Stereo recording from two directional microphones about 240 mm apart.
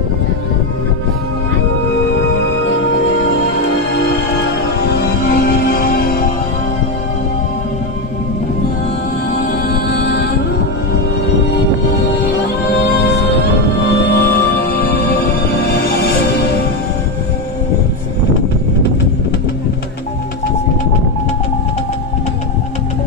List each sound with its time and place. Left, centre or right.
2.2 s music: left
9.3 s music: left
12.6 s music: left